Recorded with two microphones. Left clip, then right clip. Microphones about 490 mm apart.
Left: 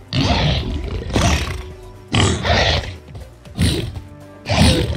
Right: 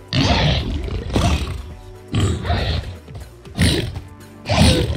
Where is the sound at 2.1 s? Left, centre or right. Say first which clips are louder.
Left 7 dB; centre.